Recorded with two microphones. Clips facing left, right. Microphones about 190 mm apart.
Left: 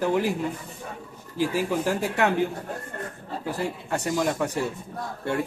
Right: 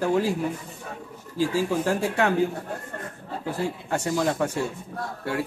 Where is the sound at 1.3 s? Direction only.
15° left (ahead or behind).